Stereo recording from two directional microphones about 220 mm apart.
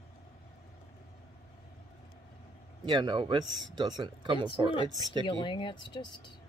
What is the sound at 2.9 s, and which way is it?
Speech, 20° right (ahead or behind).